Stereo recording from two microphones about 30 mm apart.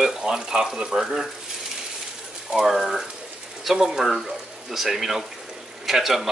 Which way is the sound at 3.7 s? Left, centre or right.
Centre.